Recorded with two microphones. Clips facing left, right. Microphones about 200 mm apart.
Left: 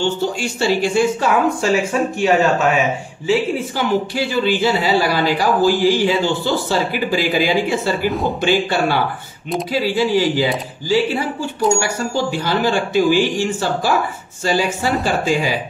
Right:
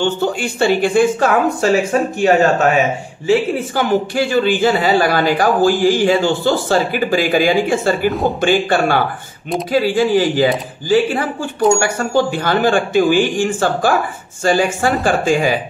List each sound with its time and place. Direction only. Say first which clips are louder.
0.0 s speech: right 2 dB; 55° right (ahead or behind)
8.1 s speech: right 3 dB; centre (ahead or behind)
8.4 s speech: right 2 dB; 50° right (ahead or behind)
11.8 s speech: right 4 dB; 55° right (ahead or behind)